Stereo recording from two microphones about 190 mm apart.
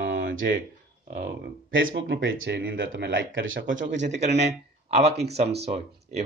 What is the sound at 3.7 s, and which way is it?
Speech, 40° right (ahead or behind).